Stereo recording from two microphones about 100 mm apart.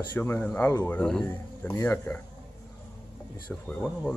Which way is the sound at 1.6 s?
20° left (ahead or behind).